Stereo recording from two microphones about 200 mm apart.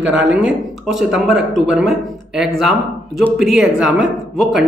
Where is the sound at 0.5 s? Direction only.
Centre (ahead or behind).